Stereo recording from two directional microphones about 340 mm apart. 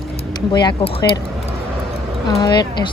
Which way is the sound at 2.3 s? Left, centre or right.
Centre.